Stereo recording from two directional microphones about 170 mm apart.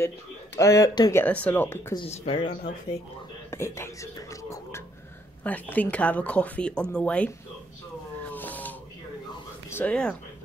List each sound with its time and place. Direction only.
0.6 s speech: 20° left (ahead or behind)
1.2 s speech: 10° left (ahead or behind)
2.0 s speech: 35° left (ahead or behind)
3.4 s speech: 15° left (ahead or behind)
8.3 s a sound: 10° left (ahead or behind)
9.7 s speech: 10° left (ahead or behind)